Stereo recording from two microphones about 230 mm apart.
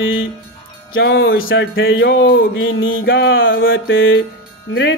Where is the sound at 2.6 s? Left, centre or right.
Left.